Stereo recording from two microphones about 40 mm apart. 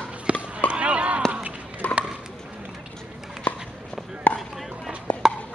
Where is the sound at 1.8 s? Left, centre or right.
Left.